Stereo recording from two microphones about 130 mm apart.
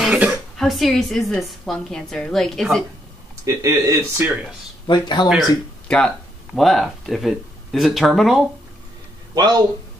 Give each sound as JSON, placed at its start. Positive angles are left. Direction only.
{"t": 0.0, "sound": "a sound", "side_deg": -10}
{"t": 0.6, "sound": "a woman's voice", "side_deg": 0}
{"t": 3.4, "sound": "speech", "side_deg": -25}
{"t": 4.2, "sound": "speech", "side_deg": -5}
{"t": 4.8, "sound": "speech", "side_deg": 35}
{"t": 5.9, "sound": "speech", "side_deg": 5}
{"t": 9.3, "sound": "speech", "side_deg": -30}